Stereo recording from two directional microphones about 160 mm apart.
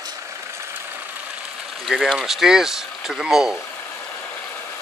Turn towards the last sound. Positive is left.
turn(degrees=-5)  # may be behind; listen again after turning